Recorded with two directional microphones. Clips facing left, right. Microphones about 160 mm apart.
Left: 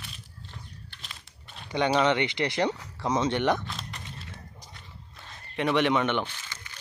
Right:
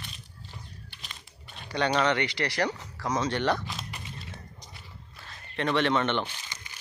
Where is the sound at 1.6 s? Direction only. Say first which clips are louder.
Left 2 dB; 15° left (ahead or behind).